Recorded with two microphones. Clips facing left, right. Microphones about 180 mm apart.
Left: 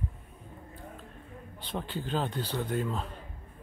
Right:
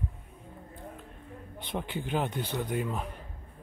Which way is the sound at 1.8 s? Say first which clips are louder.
Right 1 dB; 15° right (ahead or behind).